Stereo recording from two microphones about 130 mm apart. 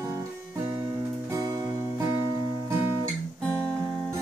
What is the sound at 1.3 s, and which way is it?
Music, 30° right (ahead or behind).